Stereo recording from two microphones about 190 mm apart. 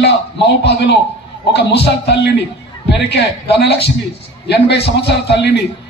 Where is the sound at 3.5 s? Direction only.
60° left (ahead or behind).